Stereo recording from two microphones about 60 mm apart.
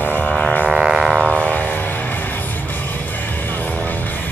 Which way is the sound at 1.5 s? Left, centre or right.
Left.